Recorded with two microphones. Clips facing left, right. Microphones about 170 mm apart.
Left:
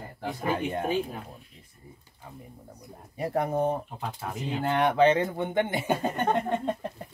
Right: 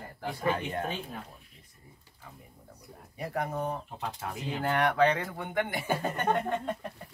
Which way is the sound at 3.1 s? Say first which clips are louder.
Left 6 dB; 30° left (ahead or behind).